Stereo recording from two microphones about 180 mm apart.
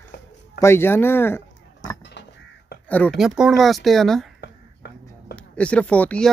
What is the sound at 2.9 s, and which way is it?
Speech, 10° left (ahead or behind).